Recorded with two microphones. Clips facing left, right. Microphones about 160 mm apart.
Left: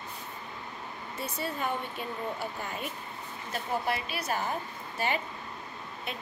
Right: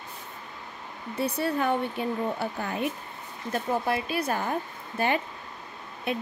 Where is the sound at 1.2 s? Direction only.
65° right (ahead or behind).